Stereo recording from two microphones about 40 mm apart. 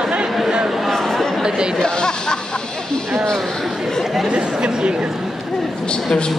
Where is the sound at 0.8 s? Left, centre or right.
Centre.